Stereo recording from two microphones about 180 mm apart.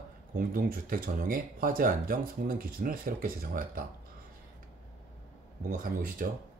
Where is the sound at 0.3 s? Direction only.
50° right (ahead or behind).